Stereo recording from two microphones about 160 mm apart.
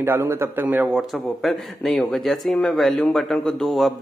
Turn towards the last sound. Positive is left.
turn(degrees=0)  # may be behind; listen again after turning